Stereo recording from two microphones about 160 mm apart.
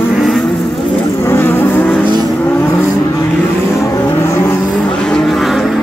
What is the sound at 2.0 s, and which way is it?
Vehicle, 25° right (ahead or behind).